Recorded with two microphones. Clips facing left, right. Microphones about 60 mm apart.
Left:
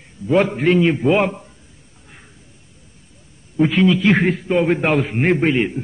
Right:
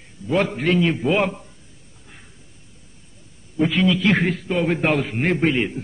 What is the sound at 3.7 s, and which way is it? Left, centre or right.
A man's voice, centre.